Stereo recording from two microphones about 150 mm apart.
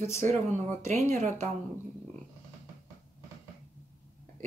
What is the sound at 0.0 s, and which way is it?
Speech, 15° left (ahead or behind).